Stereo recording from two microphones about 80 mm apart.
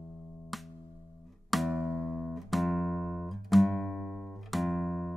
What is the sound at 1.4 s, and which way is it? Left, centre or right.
Music, centre.